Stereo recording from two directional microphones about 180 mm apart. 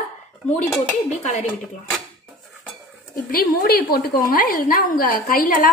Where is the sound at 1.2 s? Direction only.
40° left (ahead or behind).